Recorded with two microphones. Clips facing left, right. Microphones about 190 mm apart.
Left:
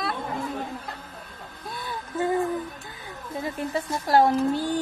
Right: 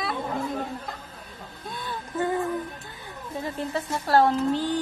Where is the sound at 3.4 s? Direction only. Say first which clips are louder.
Left 1 dB; 10° left (ahead or behind).